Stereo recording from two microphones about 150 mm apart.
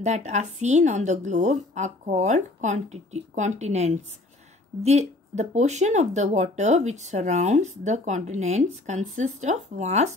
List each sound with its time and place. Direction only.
0.0 s speech: 50° right (ahead or behind)